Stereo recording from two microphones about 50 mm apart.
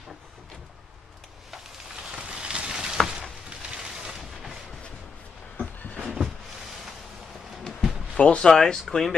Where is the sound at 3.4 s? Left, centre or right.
Centre.